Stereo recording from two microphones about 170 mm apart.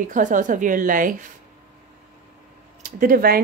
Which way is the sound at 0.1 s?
50° right (ahead or behind).